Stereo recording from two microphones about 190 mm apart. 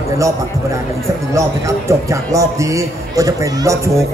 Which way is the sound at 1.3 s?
15° right (ahead or behind).